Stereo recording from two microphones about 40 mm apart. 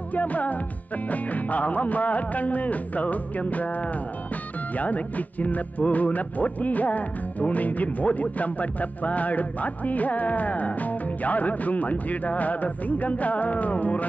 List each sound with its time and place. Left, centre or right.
0.1 s speech: left